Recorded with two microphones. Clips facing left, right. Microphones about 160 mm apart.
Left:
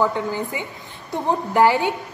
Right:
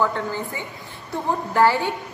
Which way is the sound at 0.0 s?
15° left (ahead or behind).